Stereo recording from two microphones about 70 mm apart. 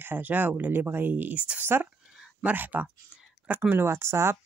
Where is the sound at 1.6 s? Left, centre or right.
Right.